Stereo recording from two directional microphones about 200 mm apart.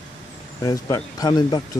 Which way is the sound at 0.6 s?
15° left (ahead or behind).